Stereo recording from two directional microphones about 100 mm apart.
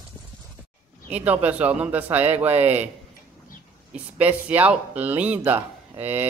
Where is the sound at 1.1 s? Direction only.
15° right (ahead or behind).